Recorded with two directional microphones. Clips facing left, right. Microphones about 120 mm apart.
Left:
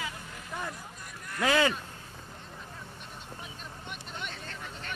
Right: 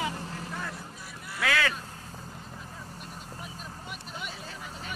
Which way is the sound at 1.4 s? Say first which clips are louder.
Left 3 dB; 20° left (ahead or behind).